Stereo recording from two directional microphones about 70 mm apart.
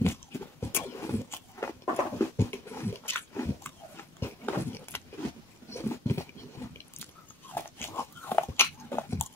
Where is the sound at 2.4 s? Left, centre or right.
Left.